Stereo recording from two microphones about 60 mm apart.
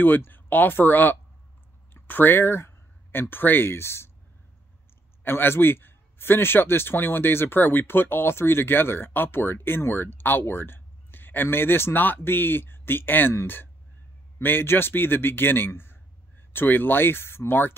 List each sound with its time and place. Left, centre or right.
0.0 s a man's voice: left
5.2 s a man's voice: left
14.4 s a man's voice: left